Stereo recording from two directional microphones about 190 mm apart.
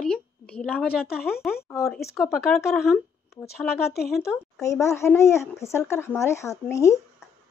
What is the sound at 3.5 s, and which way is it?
Speech, 55° left (ahead or behind).